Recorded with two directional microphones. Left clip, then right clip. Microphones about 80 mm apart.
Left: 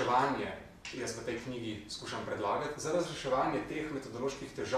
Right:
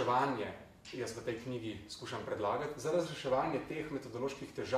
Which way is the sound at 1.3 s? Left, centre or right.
Left.